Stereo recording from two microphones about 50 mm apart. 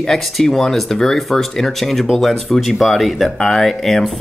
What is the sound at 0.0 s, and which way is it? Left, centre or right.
Speech, centre.